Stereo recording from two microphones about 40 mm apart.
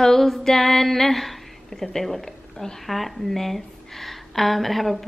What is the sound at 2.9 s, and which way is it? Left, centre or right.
A woman's voice, centre.